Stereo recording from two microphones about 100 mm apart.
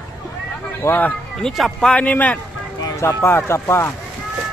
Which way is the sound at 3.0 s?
30° left (ahead or behind).